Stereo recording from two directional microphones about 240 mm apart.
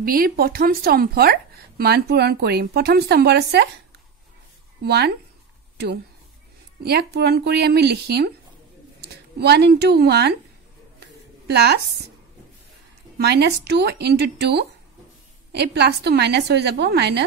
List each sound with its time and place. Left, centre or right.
0.0 s a woman's voice: right
4.8 s a woman's voice: right
6.8 s a woman's voice: right
11.0 s a sound: right
13.2 s a woman's voice: right